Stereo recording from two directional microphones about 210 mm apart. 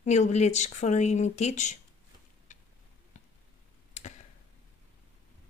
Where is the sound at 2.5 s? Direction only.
35° left (ahead or behind).